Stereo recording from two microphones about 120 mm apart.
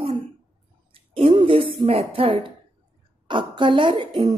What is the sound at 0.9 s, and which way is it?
Speech, 50° right (ahead or behind).